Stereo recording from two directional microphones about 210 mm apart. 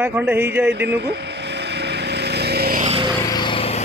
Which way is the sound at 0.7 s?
55° right (ahead or behind).